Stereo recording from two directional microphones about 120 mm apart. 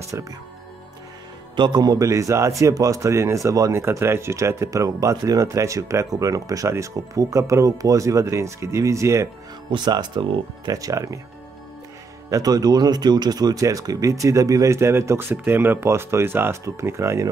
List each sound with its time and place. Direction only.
0.1 s speech: 20° right (ahead or behind)
1.6 s speech: 35° right (ahead or behind)
9.7 s speech: 35° right (ahead or behind)
12.3 s speech: 30° right (ahead or behind)